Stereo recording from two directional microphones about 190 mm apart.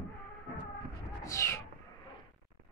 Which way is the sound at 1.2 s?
15° left (ahead or behind).